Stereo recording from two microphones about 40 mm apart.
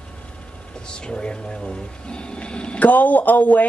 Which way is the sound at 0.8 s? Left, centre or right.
Left.